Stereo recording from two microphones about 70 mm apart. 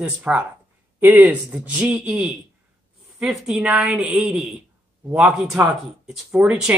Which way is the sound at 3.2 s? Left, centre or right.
Centre.